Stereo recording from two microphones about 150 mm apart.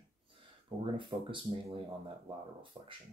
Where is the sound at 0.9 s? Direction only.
35° right (ahead or behind).